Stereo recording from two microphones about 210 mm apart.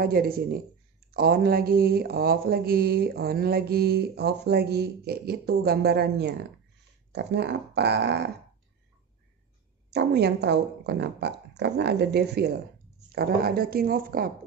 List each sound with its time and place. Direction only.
0.0 s speech: 45° right (ahead or behind)
9.8 s speech: 50° right (ahead or behind)